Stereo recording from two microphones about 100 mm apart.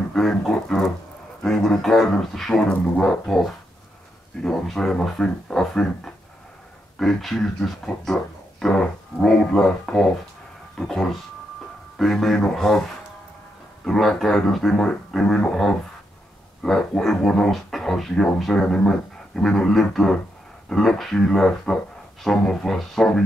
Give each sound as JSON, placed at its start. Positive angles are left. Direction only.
{"t": 0.1, "sound": "speech", "side_deg": 5}
{"t": 13.8, "sound": "speech", "side_deg": 5}